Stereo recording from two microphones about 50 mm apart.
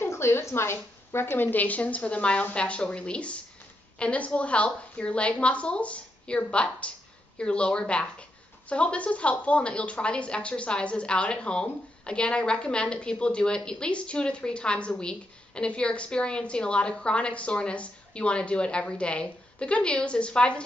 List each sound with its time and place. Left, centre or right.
0.0 s a woman's voice: left